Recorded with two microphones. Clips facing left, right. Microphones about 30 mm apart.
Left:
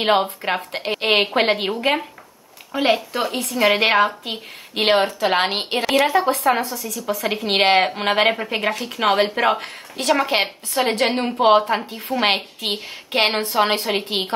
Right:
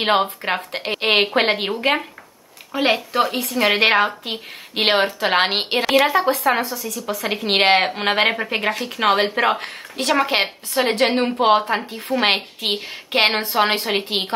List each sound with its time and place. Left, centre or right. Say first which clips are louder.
0.0 s a woman's voice: even; centre